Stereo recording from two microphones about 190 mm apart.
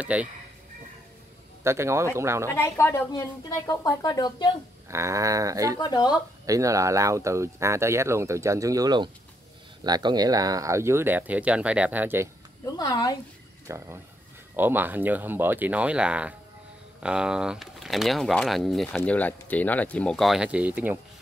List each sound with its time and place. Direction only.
0.0 s speech: 5° right (ahead or behind)
1.6 s speech: 15° right (ahead or behind)
2.5 s a woman's voice: 15° left (ahead or behind)
4.8 s speech: 15° right (ahead or behind)
5.8 s a woman's voice: 20° left (ahead or behind)
6.4 s speech: 15° right (ahead or behind)
12.7 s a woman's voice: 20° left (ahead or behind)
13.7 s speech: 15° right (ahead or behind)